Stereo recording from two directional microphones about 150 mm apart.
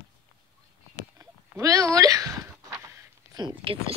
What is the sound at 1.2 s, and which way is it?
Speech, 20° right (ahead or behind).